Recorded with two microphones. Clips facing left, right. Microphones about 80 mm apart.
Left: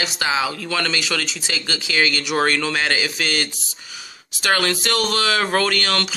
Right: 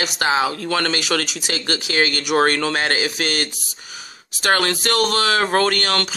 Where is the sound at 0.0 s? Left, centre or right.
Right.